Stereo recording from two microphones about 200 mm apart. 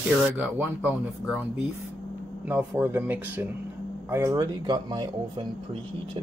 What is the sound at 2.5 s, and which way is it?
Speech, 10° right (ahead or behind).